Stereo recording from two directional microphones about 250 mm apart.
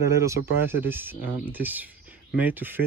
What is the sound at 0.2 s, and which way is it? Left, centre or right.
Speech, centre.